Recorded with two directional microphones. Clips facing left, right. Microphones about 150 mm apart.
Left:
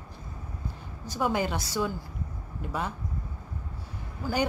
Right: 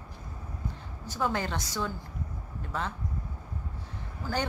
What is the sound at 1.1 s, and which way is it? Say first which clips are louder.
A woman's voice: left 3 dB; 10° left (ahead or behind).